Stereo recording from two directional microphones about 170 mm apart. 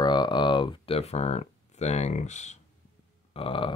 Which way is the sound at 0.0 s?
25° left (ahead or behind).